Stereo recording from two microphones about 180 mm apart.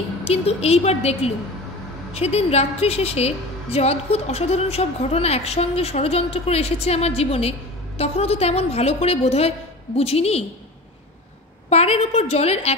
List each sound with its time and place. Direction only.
0.2 s a woman's voice: 35° left (ahead or behind)
11.7 s a woman's voice: 35° left (ahead or behind)